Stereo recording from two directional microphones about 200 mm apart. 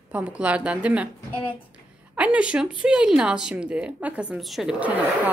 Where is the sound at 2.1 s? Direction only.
5° right (ahead or behind).